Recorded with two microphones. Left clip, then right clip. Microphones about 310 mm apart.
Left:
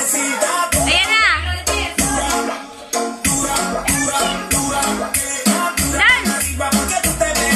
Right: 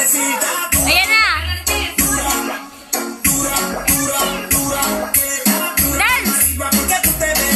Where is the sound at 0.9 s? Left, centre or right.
Centre.